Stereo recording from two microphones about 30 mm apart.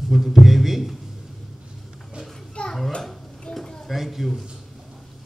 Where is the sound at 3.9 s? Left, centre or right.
Centre.